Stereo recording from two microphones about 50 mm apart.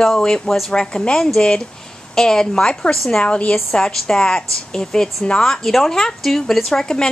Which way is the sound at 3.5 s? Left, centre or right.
Centre.